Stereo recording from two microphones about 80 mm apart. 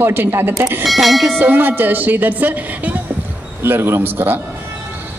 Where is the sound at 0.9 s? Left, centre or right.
Centre.